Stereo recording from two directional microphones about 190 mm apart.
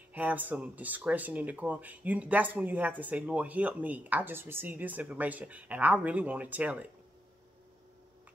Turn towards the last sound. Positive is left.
turn(degrees=-10)  # may be behind; listen again after turning